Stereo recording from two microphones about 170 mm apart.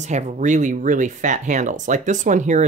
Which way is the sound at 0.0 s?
45° right (ahead or behind).